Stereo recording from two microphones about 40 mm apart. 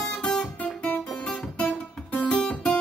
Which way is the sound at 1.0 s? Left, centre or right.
Left.